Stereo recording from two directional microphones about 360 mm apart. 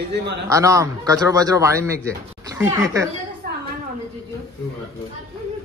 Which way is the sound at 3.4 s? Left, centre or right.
Right.